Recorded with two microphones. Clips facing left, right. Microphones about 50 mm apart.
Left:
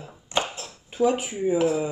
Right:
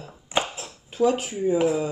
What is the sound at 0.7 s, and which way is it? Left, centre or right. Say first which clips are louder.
Speech: right 1 dB; left.